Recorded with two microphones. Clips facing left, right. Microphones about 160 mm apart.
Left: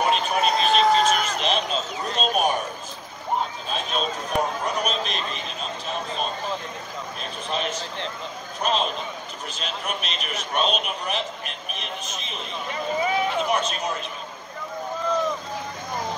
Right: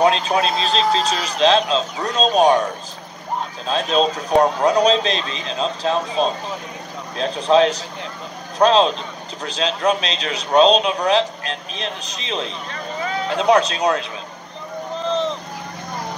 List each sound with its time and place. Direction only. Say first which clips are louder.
0.0 s a man's voice: right 5 dB; 90° right
3.6 s a man's voice: right 9 dB; 90° right
12.7 s vehicle: left 3 dB; 15° left (ahead or behind)
13.4 s a man's voice: right 8 dB; 90° right
15.0 s a sound: right 3 dB; 25° right (ahead or behind)